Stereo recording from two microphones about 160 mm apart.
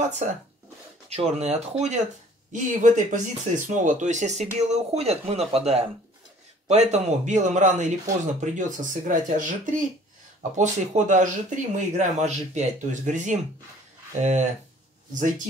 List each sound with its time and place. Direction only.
1.1 s speech: 45° right (ahead or behind)